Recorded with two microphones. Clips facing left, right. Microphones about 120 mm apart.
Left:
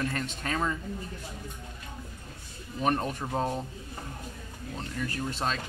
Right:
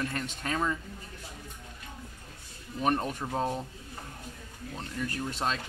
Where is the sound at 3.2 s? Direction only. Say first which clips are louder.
Left 1 dB; 5° left (ahead or behind).